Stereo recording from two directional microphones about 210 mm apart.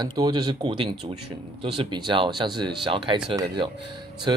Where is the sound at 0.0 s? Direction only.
20° right (ahead or behind).